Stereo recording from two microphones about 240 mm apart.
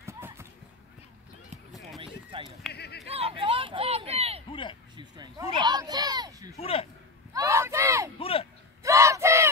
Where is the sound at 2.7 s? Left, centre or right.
Left.